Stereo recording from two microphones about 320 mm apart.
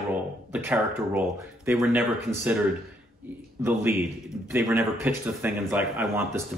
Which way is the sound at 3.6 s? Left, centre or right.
Centre.